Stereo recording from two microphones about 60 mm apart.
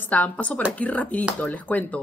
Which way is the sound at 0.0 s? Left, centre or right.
Left.